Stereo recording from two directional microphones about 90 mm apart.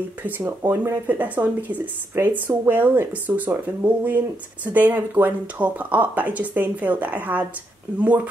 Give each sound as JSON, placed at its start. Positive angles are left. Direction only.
{"t": 0.4, "sound": "speech", "side_deg": -30}
{"t": 1.0, "sound": "speech", "side_deg": -20}